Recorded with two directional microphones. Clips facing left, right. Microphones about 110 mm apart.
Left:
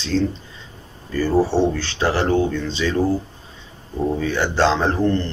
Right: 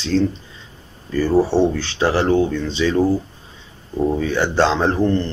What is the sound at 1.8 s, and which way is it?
Speech, 20° right (ahead or behind).